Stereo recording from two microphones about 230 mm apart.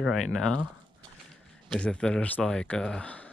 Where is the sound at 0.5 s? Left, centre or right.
Right.